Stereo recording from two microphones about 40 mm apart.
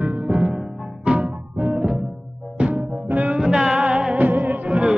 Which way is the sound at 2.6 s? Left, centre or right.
Right.